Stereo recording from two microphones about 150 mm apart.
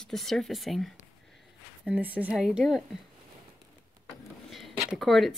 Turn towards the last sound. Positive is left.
turn(degrees=0)  # may be behind; listen again after turning